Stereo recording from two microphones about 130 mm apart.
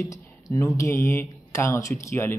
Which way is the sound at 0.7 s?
20° left (ahead or behind).